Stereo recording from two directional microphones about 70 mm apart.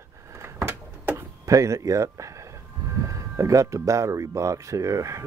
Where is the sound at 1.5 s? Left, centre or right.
Right.